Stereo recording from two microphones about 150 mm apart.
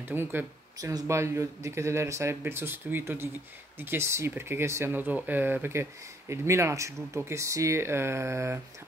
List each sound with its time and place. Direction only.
0.1 s speech: 15° right (ahead or behind)